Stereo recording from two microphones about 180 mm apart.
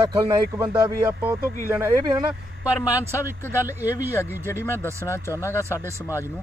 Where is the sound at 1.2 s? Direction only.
10° right (ahead or behind).